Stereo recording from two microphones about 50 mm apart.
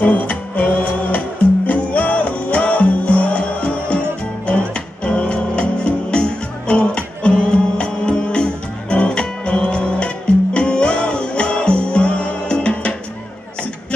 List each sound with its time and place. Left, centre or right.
0.0 s music: left
5.0 s music: left